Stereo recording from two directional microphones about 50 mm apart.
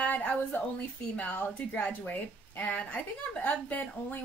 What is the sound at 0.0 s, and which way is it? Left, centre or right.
A woman's voice, left.